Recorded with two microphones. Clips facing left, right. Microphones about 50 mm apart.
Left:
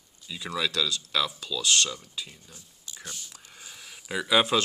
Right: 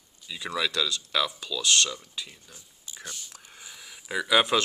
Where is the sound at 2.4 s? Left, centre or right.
Centre.